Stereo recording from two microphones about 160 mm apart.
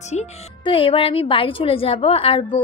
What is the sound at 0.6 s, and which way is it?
A woman's voice, 35° left (ahead or behind).